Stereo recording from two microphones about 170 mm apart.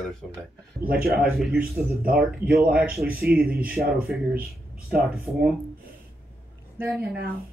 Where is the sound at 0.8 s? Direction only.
60° right (ahead or behind).